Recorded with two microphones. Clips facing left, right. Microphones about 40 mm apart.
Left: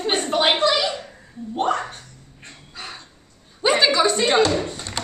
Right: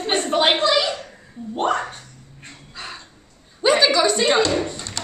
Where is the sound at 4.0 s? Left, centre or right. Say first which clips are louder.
Right 1 dB; centre.